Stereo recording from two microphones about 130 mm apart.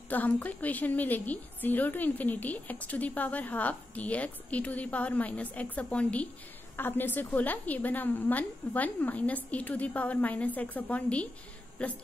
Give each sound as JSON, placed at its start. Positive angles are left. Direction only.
{"t": 0.1, "sound": "a woman's voice", "side_deg": 15}